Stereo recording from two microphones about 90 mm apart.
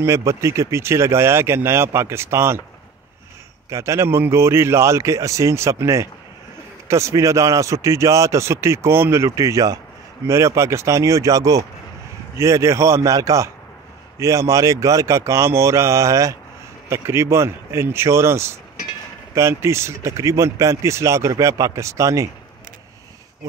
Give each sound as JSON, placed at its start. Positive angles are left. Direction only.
{"t": 0.0, "sound": "speech", "side_deg": -35}
{"t": 3.7, "sound": "speech", "side_deg": -35}